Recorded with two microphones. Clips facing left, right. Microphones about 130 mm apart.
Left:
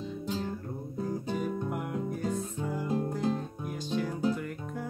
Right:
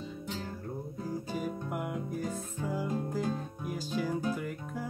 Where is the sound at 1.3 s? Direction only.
5° right (ahead or behind).